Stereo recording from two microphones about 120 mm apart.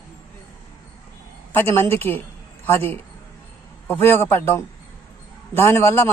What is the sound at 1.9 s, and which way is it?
Speech, 20° left (ahead or behind).